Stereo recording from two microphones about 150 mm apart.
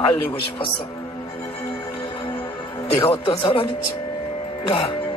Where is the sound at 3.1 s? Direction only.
35° left (ahead or behind).